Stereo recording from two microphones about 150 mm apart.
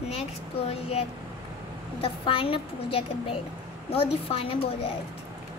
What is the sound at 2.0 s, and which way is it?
A woman's voice, 35° left (ahead or behind).